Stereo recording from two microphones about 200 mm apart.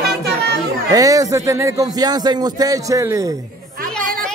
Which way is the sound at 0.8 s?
15° right (ahead or behind).